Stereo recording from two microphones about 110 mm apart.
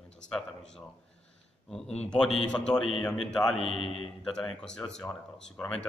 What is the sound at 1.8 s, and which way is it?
Speech, 75° left (ahead or behind).